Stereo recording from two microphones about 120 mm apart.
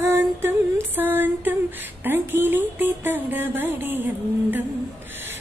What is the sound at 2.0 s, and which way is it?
Music, 15° right (ahead or behind).